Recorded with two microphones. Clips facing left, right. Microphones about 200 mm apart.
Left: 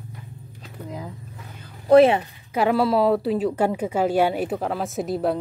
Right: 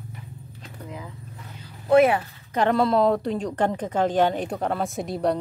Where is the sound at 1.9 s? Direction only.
30° left (ahead or behind).